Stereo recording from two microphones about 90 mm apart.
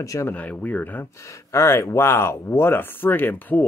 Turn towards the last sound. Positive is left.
turn(degrees=20)  # may be behind; listen again after turning